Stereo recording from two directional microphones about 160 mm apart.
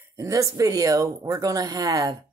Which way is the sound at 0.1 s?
20° right (ahead or behind).